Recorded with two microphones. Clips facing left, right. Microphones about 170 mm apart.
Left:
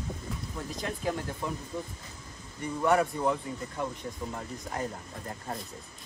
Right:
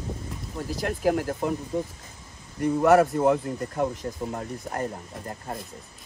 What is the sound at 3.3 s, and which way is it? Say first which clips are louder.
Speech: right 7 dB; 65° right (ahead or behind).